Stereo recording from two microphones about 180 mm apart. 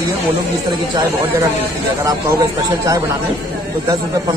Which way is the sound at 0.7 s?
20° right (ahead or behind).